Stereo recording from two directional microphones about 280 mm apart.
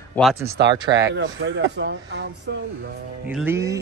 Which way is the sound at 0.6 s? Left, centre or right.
Right.